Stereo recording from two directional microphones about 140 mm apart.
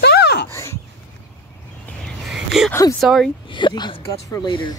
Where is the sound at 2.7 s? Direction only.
15° left (ahead or behind).